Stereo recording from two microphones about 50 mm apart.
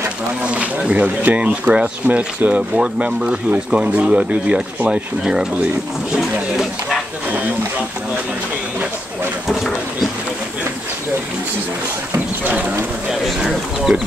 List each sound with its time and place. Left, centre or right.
0.4 s speech: right
6.5 s a sound: centre
12.4 s speech: right
13.5 s speech: centre